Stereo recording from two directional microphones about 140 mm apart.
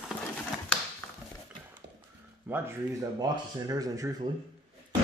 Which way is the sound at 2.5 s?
10° right (ahead or behind).